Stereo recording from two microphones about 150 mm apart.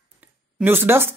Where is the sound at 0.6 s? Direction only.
15° right (ahead or behind).